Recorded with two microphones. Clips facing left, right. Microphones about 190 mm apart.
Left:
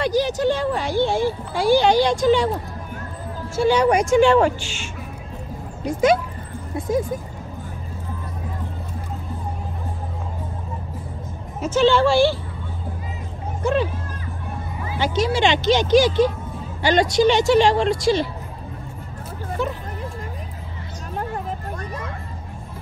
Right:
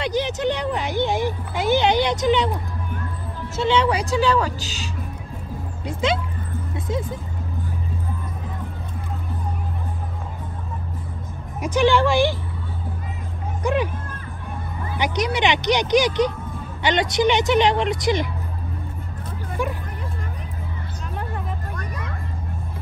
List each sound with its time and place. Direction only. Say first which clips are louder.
0.0 s speech: left 3 dB; 20° right (ahead or behind)
3.5 s speech: left 2 dB; 25° right (ahead or behind)
5.9 s speech: left 6 dB; 25° right (ahead or behind)
11.6 s speech: left 1 dB; 15° right (ahead or behind)
13.6 s music: left 1 dB; 15° right (ahead or behind)
15.0 s speech: left 2 dB; 20° right (ahead or behind)
19.6 s speech: left 1 dB; 10° right (ahead or behind)
21.7 s vehicle: left 2 dB; 30° left (ahead or behind)